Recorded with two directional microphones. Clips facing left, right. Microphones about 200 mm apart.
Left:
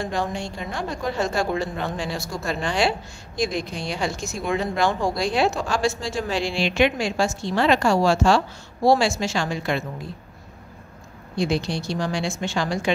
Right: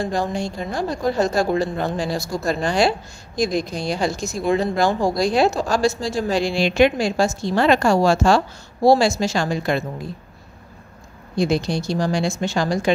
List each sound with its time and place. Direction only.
0.0 s speech: 40° right (ahead or behind)
11.3 s speech: 40° right (ahead or behind)